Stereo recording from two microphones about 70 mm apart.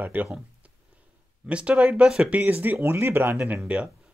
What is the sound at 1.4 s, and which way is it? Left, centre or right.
Speech, centre.